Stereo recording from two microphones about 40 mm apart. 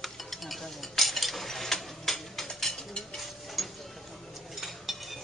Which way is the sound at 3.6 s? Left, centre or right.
Centre.